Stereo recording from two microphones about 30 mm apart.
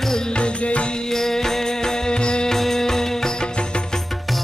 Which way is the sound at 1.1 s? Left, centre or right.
Centre.